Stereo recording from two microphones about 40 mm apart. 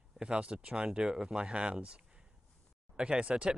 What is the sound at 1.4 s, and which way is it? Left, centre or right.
Speech, right.